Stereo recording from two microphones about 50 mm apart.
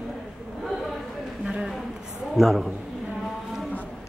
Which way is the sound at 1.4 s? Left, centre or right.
Centre.